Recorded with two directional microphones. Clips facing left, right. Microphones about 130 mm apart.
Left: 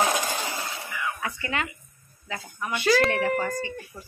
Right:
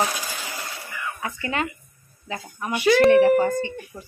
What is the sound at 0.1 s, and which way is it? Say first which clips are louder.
Coin: left 5 dB; 45° left (ahead or behind).